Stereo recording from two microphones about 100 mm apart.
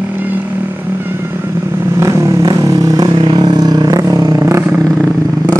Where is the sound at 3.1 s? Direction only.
65° right (ahead or behind).